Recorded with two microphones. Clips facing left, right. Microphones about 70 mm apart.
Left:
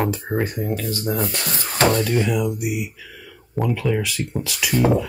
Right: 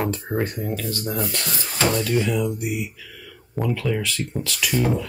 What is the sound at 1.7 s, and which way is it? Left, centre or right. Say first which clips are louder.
Speech: left 4 dB; left.